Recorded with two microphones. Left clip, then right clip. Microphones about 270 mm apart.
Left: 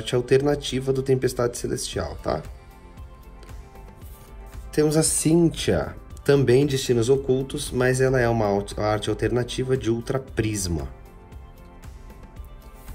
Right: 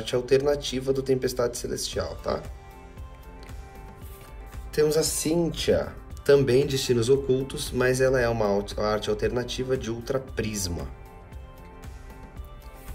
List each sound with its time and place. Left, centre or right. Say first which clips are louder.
0.0 s speech: left 2 dB; centre
4.9 s speech: left 3 dB; left
5.9 s speech: right 1 dB; centre